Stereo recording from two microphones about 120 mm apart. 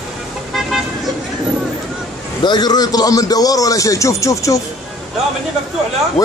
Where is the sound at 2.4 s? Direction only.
35° left (ahead or behind).